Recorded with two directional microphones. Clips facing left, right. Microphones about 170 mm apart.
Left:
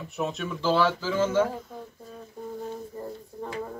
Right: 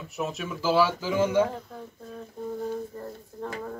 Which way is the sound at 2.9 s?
10° left (ahead or behind).